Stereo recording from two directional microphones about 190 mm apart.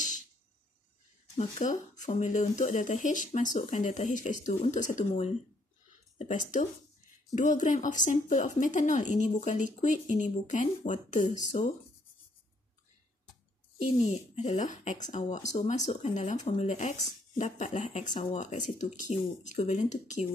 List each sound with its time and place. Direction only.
1.3 s speech: 40° left (ahead or behind)
14.0 s speech: 35° left (ahead or behind)